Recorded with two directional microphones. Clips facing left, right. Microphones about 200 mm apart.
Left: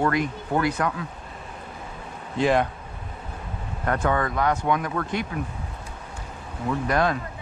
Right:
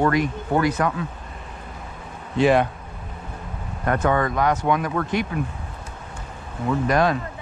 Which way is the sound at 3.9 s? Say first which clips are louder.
Right 3 dB; 20° right (ahead or behind).